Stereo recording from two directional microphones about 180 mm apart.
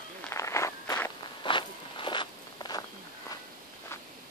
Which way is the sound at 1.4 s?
25° left (ahead or behind).